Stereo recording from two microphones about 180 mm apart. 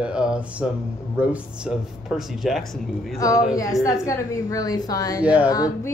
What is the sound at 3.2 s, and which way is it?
A woman's voice, 20° left (ahead or behind).